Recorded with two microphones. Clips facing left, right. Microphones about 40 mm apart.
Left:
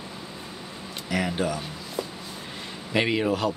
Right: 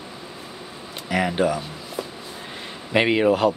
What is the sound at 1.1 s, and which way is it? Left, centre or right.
Speech, right.